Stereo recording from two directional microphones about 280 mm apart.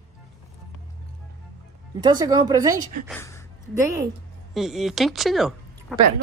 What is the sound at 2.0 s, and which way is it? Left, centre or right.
Speech, centre.